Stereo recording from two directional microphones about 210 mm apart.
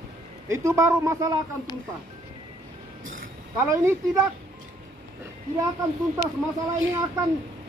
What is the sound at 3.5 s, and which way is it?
Speech, 10° right (ahead or behind).